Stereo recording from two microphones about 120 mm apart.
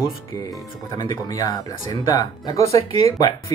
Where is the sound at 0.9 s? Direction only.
35° left (ahead or behind).